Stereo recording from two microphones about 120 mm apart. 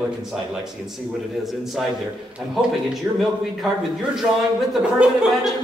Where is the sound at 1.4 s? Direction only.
Centre (ahead or behind).